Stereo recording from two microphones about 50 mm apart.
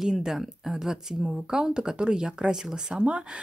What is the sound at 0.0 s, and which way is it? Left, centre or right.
Speech, centre.